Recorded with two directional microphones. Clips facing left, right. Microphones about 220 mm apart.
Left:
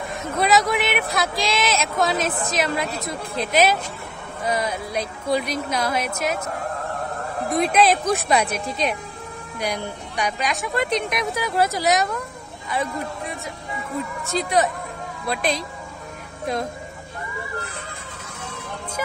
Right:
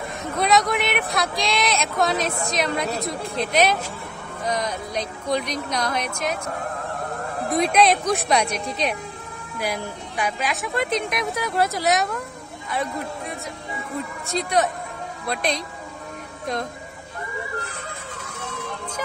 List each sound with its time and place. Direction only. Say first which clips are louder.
0.2 s speech: left 1 dB; 5° left (ahead or behind)
7.4 s a man's voice: even; centre (ahead or behind)